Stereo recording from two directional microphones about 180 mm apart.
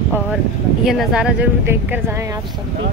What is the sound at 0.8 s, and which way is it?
Speech, centre (ahead or behind).